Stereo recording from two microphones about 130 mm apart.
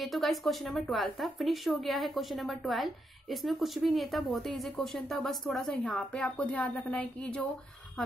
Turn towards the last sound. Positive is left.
turn(degrees=10)  # may be behind; listen again after turning